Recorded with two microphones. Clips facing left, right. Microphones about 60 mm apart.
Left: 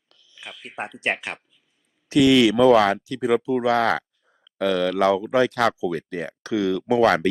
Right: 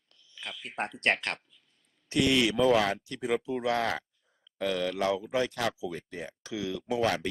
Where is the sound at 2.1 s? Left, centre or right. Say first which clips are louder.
Left 10 dB; left.